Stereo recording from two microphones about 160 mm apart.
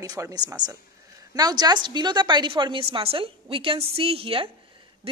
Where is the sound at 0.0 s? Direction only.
20° right (ahead or behind).